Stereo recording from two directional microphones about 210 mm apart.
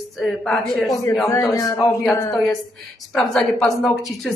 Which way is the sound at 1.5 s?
15° left (ahead or behind).